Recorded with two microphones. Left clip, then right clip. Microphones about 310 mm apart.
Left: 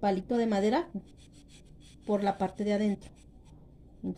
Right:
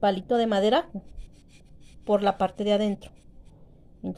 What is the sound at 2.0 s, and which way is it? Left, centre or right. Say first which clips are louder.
Speech: right 7 dB; right.